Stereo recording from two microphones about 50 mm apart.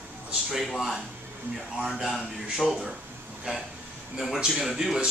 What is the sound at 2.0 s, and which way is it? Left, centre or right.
Speech, centre.